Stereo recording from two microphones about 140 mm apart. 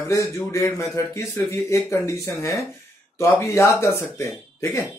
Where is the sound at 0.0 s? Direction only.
20° left (ahead or behind).